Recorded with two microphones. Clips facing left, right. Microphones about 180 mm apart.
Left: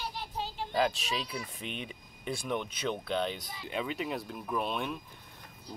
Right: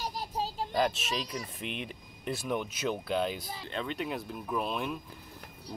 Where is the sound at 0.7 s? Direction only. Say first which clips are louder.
Even; centre (ahead or behind).